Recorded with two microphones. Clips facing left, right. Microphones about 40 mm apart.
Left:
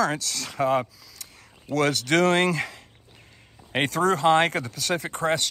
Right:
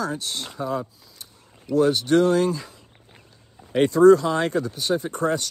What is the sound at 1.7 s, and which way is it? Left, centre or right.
Speech, left.